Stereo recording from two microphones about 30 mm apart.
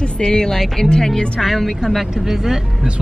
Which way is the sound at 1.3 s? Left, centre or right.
Centre.